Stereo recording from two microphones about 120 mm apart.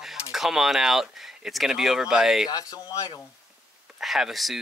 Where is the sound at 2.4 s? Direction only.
30° left (ahead or behind).